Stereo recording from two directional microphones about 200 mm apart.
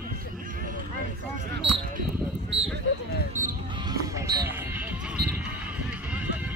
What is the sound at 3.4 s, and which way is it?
Basketball bounce, 40° right (ahead or behind).